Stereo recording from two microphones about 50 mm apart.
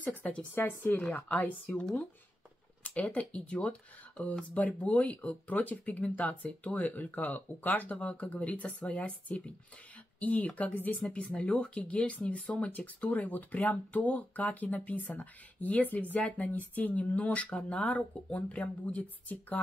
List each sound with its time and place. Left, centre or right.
0.0 s speech: left